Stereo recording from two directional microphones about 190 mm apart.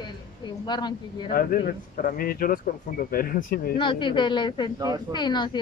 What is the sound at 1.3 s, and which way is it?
A man's voice, 50° left (ahead or behind).